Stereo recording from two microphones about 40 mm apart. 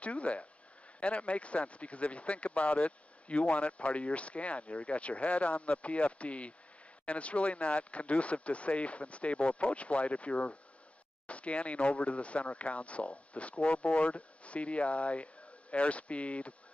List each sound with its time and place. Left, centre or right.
0.0 s speech: left